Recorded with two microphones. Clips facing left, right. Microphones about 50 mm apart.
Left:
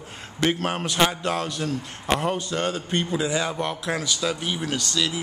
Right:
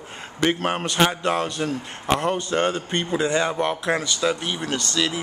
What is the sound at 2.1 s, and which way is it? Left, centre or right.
Speech, centre.